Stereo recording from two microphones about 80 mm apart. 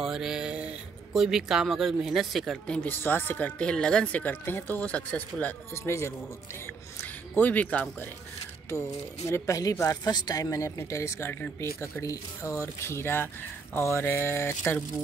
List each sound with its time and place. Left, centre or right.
0.0 s mantra: centre
1.1 s speech: centre
2.6 s speech: centre
2.9 s speech: left
5.9 s a sound: left
6.6 s speech: left
8.6 s speech: left
12.4 s a sound: left